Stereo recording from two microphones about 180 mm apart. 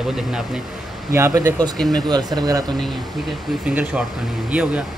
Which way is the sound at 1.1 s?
15° right (ahead or behind).